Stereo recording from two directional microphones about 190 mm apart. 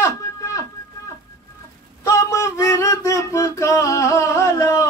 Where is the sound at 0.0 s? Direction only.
15° left (ahead or behind).